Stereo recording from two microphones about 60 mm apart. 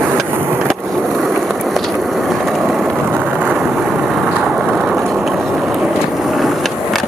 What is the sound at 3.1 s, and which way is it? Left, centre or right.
Vehicle, right.